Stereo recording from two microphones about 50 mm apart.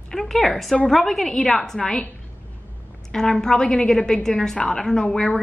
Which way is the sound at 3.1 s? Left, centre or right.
Centre.